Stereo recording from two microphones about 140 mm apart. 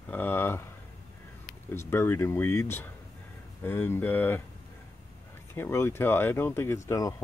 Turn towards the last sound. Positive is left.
turn(degrees=25)  # may be behind; listen again after turning